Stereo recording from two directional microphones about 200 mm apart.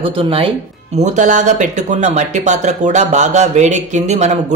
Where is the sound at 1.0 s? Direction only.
40° right (ahead or behind).